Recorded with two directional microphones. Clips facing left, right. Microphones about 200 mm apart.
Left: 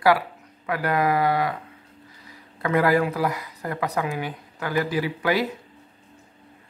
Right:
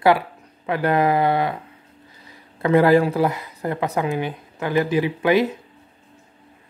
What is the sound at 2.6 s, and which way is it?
Speech, 25° right (ahead or behind).